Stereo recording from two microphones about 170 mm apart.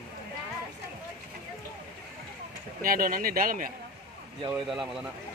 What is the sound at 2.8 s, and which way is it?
Speech, 55° right (ahead or behind).